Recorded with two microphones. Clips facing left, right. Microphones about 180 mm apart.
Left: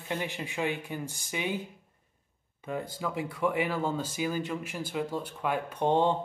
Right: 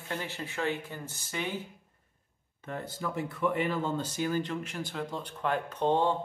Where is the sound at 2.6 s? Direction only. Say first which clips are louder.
Left 2 dB; 10° left (ahead or behind).